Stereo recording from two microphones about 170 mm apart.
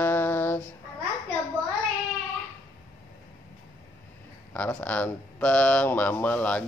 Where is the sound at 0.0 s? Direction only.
10° left (ahead or behind).